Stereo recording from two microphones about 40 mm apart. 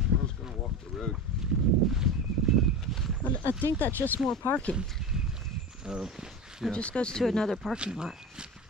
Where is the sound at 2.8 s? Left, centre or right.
Centre.